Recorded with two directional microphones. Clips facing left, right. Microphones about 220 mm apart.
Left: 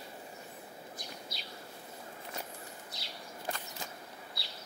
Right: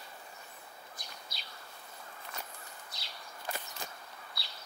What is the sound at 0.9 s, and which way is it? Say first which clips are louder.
Bird: left 4 dB; 5° left (ahead or behind).